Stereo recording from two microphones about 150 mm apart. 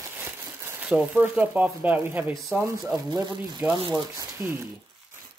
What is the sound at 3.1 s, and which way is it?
Speech, 30° right (ahead or behind).